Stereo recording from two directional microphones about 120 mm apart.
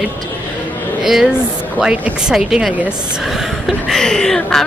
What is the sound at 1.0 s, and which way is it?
Speech, 5° right (ahead or behind).